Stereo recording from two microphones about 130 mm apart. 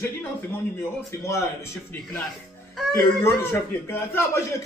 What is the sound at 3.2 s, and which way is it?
A man's voice, 20° left (ahead or behind).